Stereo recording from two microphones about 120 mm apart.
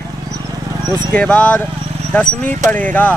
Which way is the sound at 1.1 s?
10° left (ahead or behind).